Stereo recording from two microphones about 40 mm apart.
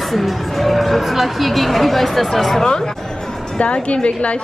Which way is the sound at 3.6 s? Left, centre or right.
Left.